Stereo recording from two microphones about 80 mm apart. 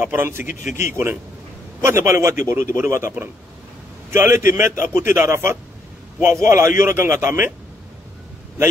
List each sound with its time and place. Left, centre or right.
0.0 s a man's voice: right